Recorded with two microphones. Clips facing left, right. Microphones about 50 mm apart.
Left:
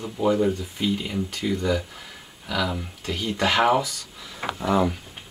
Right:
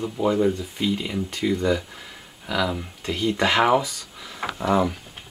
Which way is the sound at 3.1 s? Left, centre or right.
Right.